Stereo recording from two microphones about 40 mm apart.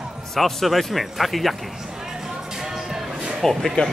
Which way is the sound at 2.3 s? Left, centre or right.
Centre.